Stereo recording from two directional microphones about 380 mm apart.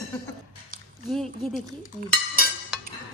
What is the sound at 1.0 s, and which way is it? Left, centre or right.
Speech, centre.